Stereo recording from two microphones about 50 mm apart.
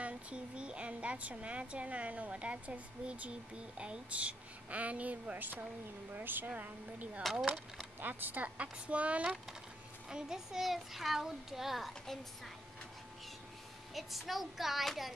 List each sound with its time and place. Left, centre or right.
0.0 s speech: right
6.5 s speech: right
10.0 s a child's voice: centre
13.9 s a child's voice: centre